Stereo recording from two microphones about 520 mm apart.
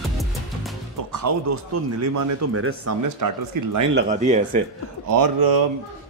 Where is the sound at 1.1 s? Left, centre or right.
Right.